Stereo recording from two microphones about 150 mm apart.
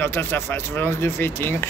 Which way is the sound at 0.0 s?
15° left (ahead or behind).